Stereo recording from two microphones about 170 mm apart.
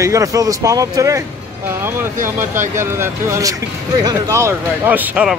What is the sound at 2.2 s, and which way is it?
Speech, 15° right (ahead or behind).